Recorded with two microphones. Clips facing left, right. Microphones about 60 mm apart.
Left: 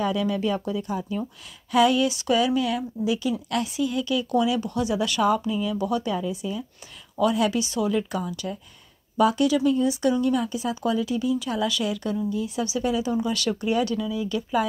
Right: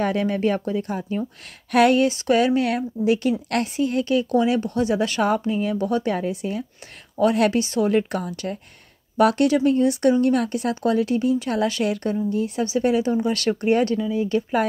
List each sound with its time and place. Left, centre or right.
0.0 s speech: right
13.9 s speech: right